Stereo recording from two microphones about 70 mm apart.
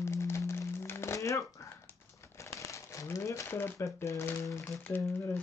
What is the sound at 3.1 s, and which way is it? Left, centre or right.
Speech, left.